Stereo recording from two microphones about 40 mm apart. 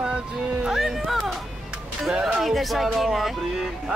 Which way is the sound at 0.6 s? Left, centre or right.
Centre.